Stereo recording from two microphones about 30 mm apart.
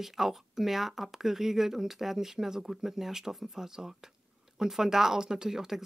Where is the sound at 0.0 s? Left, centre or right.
Centre.